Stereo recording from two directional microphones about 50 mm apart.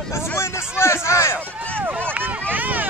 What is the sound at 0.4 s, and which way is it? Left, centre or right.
Speech, left.